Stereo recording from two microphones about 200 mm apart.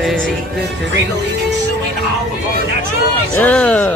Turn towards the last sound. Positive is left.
turn(degrees=5)  # may be behind; listen again after turning